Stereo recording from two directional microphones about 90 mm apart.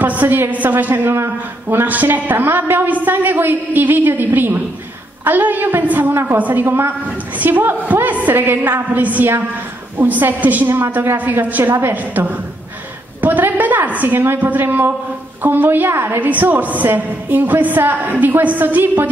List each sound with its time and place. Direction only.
0.0 s a woman's voice: 20° right (ahead or behind)